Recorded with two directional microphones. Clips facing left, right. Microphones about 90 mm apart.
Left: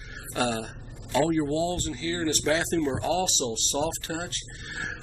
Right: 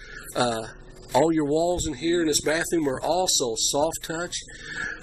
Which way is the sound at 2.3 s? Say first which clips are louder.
Right 1 dB; 5° right (ahead or behind).